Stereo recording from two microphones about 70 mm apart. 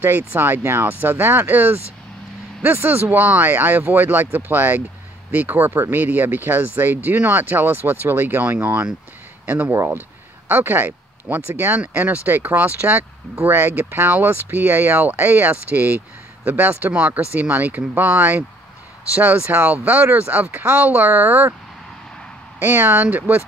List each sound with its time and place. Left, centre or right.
0.0 s speech: right
22.6 s speech: right